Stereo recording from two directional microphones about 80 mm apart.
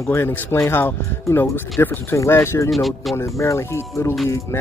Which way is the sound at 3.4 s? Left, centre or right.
Left.